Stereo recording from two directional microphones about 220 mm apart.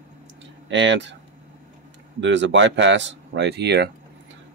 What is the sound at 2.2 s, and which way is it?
Speech, 55° right (ahead or behind).